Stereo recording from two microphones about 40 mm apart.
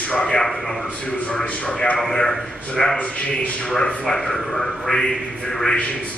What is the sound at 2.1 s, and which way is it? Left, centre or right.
A man's voice, centre.